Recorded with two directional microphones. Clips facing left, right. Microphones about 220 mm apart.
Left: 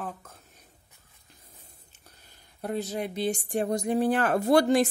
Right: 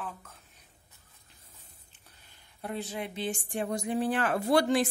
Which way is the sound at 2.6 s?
40° left (ahead or behind).